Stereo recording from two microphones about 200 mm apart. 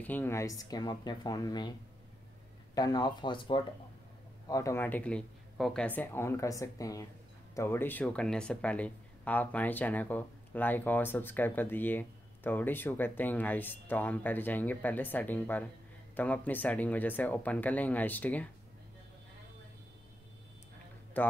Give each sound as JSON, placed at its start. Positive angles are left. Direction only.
{"t": 0.0, "sound": "speech", "side_deg": 10}
{"t": 2.7, "sound": "speech", "side_deg": 20}
{"t": 21.2, "sound": "speech", "side_deg": 10}